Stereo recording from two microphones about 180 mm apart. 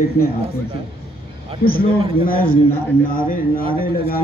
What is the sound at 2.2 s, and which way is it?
Speech, 55° left (ahead or behind).